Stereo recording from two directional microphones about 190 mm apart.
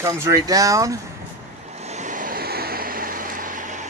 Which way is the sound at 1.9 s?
40° right (ahead or behind).